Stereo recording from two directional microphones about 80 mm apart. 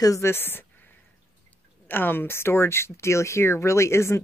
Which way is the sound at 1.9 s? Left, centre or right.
Left.